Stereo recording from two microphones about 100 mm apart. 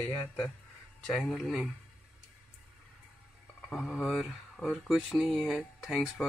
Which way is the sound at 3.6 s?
Centre (ahead or behind).